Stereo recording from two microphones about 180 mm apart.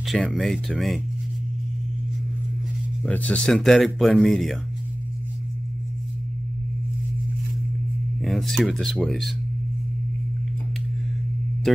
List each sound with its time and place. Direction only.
0.0 s speech: centre (ahead or behind)
3.0 s speech: 10° left (ahead or behind)
8.2 s speech: centre (ahead or behind)